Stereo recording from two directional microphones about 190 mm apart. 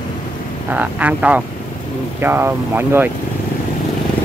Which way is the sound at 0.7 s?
10° right (ahead or behind).